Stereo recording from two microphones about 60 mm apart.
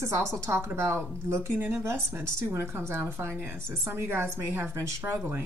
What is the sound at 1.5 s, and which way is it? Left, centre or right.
Speech, right.